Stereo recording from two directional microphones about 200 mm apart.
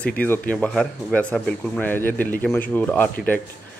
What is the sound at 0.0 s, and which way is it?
Speech, 5° left (ahead or behind).